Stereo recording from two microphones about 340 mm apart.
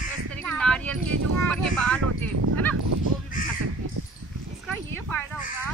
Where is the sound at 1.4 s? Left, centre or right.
Centre.